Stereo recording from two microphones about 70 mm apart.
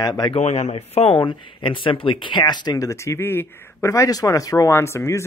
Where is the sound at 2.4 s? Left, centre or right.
Left.